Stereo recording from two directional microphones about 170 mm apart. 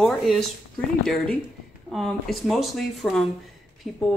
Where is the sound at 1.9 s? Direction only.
Centre (ahead or behind).